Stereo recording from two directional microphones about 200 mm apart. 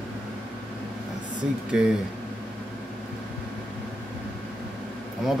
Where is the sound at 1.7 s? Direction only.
5° right (ahead or behind).